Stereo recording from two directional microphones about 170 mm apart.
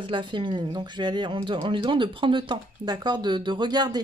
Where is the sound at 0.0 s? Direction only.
30° right (ahead or behind).